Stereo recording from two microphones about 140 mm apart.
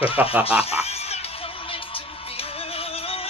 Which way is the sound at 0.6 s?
50° left (ahead or behind).